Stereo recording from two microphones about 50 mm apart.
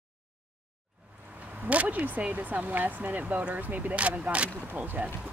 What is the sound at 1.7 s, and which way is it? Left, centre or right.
Speech, right.